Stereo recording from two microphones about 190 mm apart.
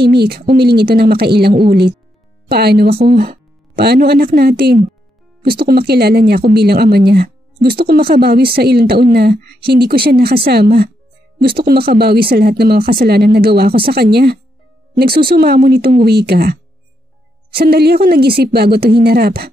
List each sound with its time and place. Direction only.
0.0 s speech: 60° right (ahead or behind)
1.5 s a woman's voice: 30° right (ahead or behind)
2.5 s speech: 55° right (ahead or behind)
17.6 s speech: 55° right (ahead or behind)